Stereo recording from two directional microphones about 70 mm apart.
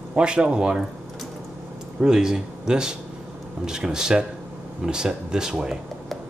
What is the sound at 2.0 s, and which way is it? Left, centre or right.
Speech, centre.